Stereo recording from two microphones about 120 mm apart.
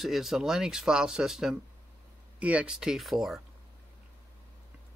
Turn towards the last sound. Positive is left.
turn(degrees=0)  # may be behind; listen again after turning